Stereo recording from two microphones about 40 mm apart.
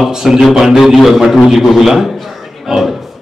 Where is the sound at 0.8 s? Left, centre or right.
Centre.